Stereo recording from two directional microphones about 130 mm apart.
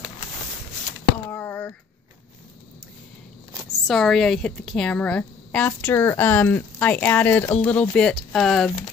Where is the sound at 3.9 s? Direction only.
Centre (ahead or behind).